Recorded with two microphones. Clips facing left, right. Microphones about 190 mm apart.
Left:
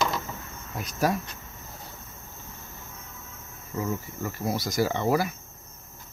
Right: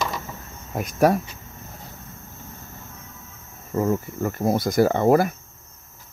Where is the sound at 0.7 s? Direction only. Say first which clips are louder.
Right 8 dB; 50° right (ahead or behind).